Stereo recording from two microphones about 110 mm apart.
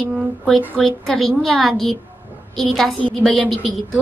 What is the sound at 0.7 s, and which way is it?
A woman's voice, centre (ahead or behind).